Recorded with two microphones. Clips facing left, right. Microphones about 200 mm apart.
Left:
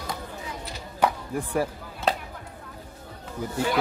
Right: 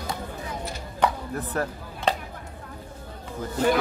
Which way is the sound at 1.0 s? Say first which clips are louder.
Even; 10° left (ahead or behind).